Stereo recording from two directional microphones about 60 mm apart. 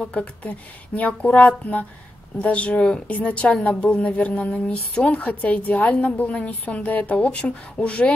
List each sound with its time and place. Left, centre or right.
0.1 s a woman's voice: left